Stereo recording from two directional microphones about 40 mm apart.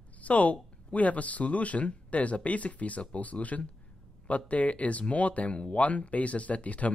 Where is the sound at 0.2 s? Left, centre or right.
Left.